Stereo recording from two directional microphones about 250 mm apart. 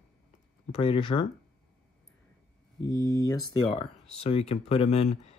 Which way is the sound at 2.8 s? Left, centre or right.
Centre.